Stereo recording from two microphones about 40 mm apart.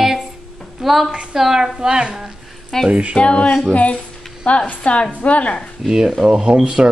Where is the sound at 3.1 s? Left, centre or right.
Left.